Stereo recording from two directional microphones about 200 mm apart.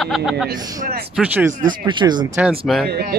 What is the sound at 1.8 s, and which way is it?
Speech, 20° right (ahead or behind).